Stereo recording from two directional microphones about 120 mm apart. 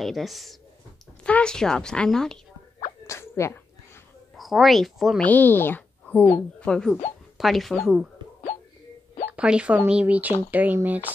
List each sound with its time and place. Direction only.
0.0 s speech: centre (ahead or behind)
3.1 s sneeze: 25° left (ahead or behind)
4.4 s speech: centre (ahead or behind)
5.2 s speech: 15° left (ahead or behind); by 8.1 s centre (ahead or behind)
9.3 s speech: 10° right (ahead or behind)